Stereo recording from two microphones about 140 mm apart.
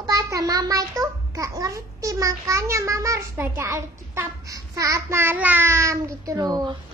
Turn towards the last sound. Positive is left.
turn(degrees=-30)  # may be behind; listen again after turning